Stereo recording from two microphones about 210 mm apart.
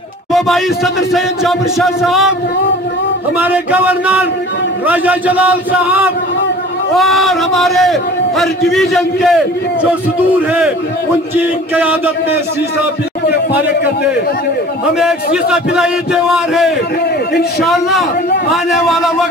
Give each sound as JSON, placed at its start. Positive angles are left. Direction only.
{"t": 0.3, "sound": "a man's voice", "side_deg": 0}
{"t": 3.3, "sound": "a man's voice", "side_deg": -5}
{"t": 11.3, "sound": "a man's voice", "side_deg": -10}
{"t": 15.0, "sound": "a man's voice", "side_deg": -5}
{"t": 17.3, "sound": "a man's voice", "side_deg": 50}
{"t": 17.6, "sound": "a man's voice", "side_deg": 0}